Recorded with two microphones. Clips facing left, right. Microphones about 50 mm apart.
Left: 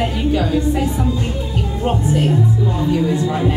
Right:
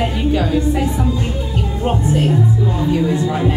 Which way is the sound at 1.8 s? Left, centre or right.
Centre.